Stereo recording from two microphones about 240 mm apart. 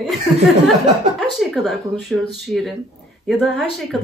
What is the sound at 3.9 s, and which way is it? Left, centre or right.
Speech, centre.